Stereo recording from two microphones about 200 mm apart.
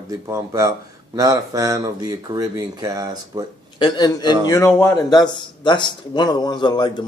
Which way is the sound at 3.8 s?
20° left (ahead or behind).